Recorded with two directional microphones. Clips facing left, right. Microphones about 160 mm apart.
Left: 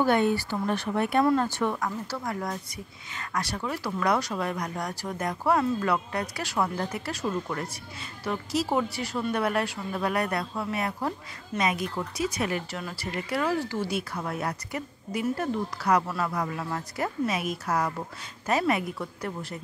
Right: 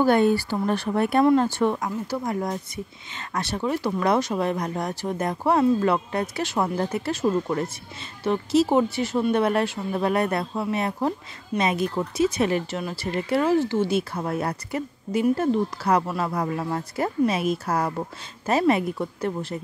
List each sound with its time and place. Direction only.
0.0 s speech: 35° right (ahead or behind)
1.2 s speech: 25° right (ahead or behind)
1.9 s speech: 15° right (ahead or behind)